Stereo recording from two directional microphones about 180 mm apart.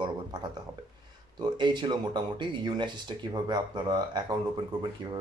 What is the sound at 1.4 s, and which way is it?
Speech, 25° right (ahead or behind).